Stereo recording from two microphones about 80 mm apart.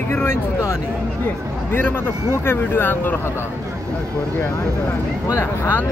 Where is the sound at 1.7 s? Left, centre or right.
Left.